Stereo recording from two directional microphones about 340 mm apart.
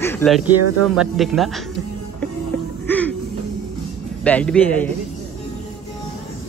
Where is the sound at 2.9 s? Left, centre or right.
Centre.